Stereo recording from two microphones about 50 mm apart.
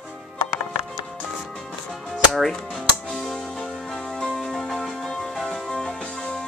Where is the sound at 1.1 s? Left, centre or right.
Centre.